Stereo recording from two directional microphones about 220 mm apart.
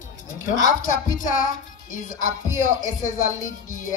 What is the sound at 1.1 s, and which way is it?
Speech, 35° left (ahead or behind).